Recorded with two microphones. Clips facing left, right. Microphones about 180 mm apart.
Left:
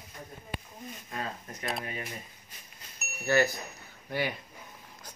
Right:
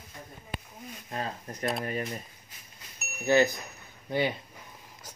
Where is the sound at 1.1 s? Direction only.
35° right (ahead or behind).